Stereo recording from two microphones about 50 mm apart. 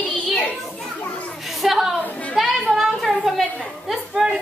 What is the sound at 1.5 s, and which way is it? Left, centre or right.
Speech, centre.